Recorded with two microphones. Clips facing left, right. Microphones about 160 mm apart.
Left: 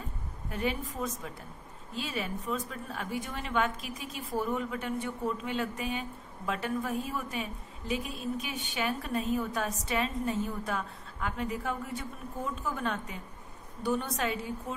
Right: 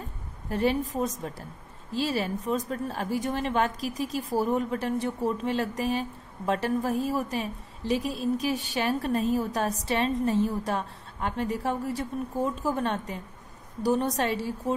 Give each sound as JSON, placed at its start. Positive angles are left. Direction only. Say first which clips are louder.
{"t": 0.5, "sound": "a woman's voice", "louder": "right 7 dB", "side_deg": -35}